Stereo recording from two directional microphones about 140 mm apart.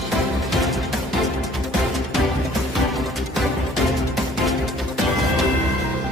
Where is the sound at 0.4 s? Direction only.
Centre (ahead or behind).